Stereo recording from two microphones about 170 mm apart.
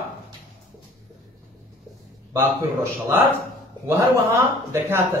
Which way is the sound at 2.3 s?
15° right (ahead or behind).